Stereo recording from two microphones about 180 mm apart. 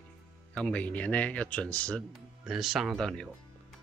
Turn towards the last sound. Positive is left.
turn(degrees=5)  # may be behind; listen again after turning